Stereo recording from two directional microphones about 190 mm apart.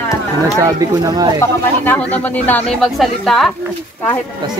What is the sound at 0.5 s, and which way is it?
Speech, 20° right (ahead or behind).